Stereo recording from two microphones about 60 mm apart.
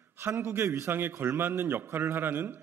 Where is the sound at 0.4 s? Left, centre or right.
Right.